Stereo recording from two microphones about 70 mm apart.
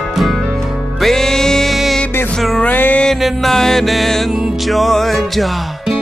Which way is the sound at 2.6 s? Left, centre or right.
Left.